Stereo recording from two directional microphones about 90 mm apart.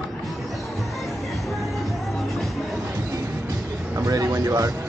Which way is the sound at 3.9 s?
40° right (ahead or behind).